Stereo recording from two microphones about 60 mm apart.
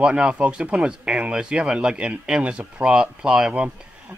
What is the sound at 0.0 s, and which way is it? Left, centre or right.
Speech, centre.